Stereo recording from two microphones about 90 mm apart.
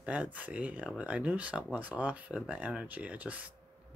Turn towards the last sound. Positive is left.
turn(degrees=-15)  # may be behind; listen again after turning